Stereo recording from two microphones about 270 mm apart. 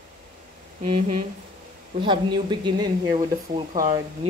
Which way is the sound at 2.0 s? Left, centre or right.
Centre.